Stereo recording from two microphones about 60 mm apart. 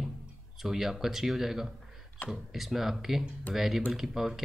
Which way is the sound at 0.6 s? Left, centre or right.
Centre.